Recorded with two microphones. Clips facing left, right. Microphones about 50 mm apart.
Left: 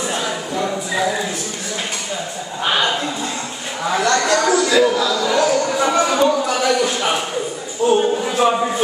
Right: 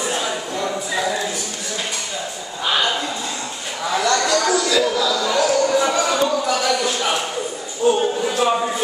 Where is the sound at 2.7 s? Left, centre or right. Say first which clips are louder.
Left 1 dB; centre.